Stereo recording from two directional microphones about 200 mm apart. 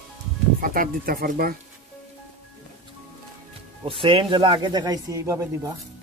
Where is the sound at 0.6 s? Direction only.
45° right (ahead or behind).